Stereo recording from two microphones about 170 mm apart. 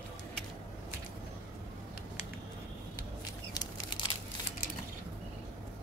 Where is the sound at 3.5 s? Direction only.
25° left (ahead or behind).